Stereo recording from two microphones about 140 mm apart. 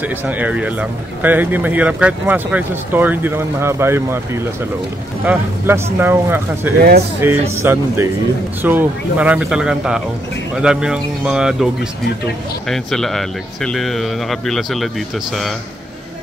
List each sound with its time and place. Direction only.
0.0 s speech: 10° right (ahead or behind)
5.2 s speech: 10° right (ahead or behind)